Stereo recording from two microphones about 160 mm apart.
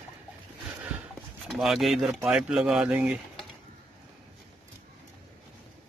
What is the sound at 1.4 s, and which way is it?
Speech, centre (ahead or behind).